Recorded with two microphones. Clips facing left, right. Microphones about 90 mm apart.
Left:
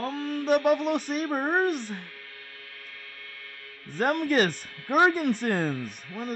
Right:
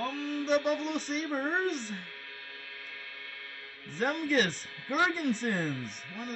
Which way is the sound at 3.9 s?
60° left (ahead or behind).